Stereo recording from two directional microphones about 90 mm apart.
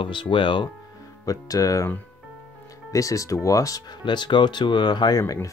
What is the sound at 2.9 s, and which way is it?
Speech, 40° left (ahead or behind).